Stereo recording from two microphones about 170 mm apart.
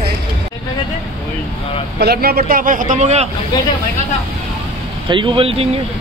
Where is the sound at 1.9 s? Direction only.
65° right (ahead or behind); by 3.2 s 40° right (ahead or behind).